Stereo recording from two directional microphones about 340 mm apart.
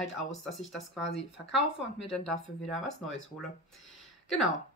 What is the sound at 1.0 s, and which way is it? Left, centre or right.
Speech, left.